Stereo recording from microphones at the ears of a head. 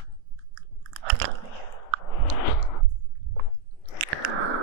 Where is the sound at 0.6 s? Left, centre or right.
Right.